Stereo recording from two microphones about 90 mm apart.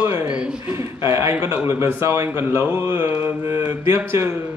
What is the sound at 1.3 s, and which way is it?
Mantra, 25° right (ahead or behind).